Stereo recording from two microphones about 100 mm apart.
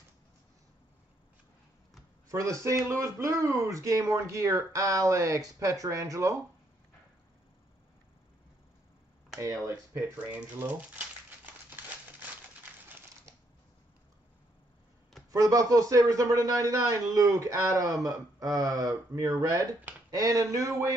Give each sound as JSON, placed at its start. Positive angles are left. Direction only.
{"t": 2.2, "sound": "a man's voice", "side_deg": -35}
{"t": 9.4, "sound": "a man's voice", "side_deg": -35}
{"t": 10.2, "sound": "speech", "side_deg": -20}
{"t": 11.7, "sound": "crumpling", "side_deg": -20}
{"t": 15.3, "sound": "a man's voice", "side_deg": -35}